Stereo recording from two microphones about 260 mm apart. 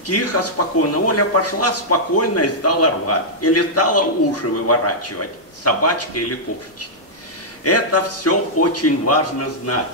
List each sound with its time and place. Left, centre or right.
0.0 s speech: left
7.6 s speech: left